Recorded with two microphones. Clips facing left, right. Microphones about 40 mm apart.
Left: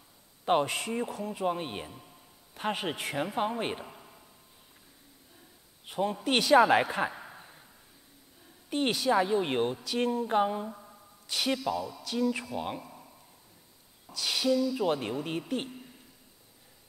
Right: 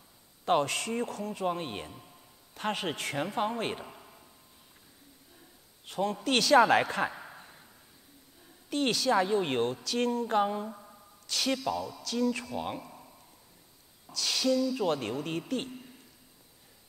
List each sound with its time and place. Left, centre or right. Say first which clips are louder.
0.5 s a man's voice: even; centre
5.9 s speech: even; centre
6.6 s a sound: even; centre
8.6 s speech: even; centre
9.1 s speech: left 1 dB; centre
11.2 s speech: even; centre
11.5 s a man's voice: left 1 dB; centre
14.1 s speech: left 1 dB; centre